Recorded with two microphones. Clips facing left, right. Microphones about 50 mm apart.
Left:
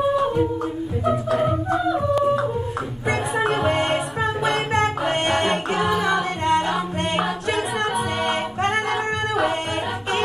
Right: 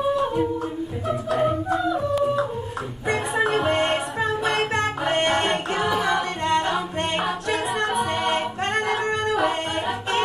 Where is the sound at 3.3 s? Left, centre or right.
Left.